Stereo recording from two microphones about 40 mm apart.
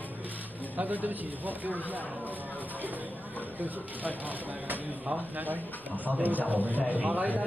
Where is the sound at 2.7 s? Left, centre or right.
Right.